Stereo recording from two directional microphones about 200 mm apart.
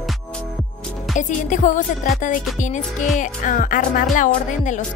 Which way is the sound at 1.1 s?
40° left (ahead or behind).